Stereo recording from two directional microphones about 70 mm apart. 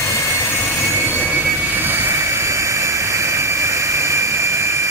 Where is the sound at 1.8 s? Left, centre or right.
Right.